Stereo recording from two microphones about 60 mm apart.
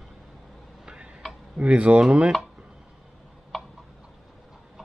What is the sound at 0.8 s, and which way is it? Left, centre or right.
Tick-tock, centre.